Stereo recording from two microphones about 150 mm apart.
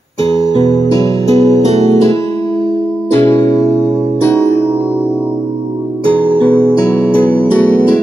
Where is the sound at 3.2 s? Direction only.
20° left (ahead or behind).